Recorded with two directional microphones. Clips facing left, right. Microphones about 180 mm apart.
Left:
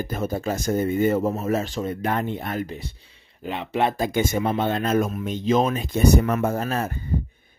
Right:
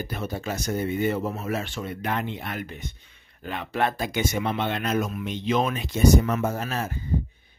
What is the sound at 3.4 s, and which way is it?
Speech, 20° left (ahead or behind).